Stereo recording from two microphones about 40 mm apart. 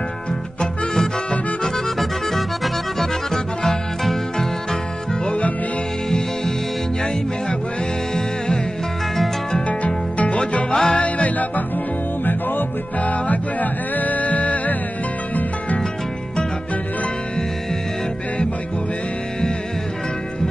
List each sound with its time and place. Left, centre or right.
2.0 s music: centre
5.2 s music: left
6.0 s music: centre
9.8 s music: left
10.7 s music: centre
11.0 s music: left
12.3 s music: left
13.0 s music: left